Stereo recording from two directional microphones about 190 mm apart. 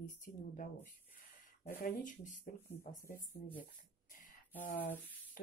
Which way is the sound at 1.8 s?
45° left (ahead or behind).